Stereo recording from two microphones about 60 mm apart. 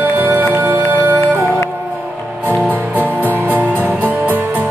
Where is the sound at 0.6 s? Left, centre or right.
Right.